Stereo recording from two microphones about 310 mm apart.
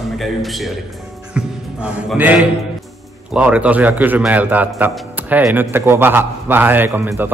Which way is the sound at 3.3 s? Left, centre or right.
Centre.